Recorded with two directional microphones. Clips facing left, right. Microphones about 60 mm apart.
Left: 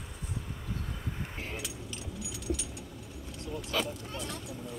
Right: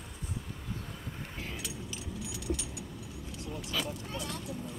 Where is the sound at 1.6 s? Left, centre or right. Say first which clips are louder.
Even; centre.